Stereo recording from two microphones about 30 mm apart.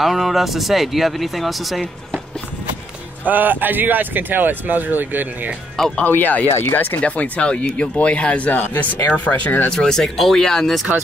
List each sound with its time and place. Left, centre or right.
0.0 s speech: centre
3.3 s speech: right
6.0 s speech: left
7.0 s speech: left
7.4 s speech: left
8.5 s speech: left
9.7 s speech: centre